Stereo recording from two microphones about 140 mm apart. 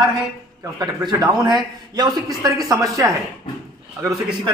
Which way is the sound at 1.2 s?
30° right (ahead or behind).